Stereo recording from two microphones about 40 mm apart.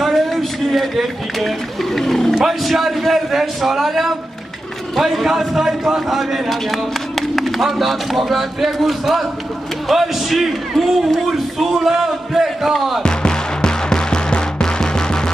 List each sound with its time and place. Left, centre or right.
0.0 s a sound: centre
2.3 s a man's voice: centre
13.0 s music: left